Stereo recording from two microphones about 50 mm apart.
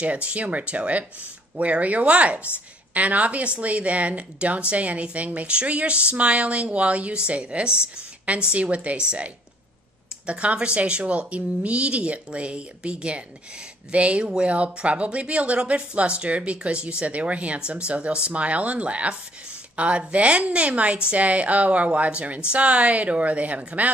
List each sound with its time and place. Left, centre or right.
0.0 s speech: right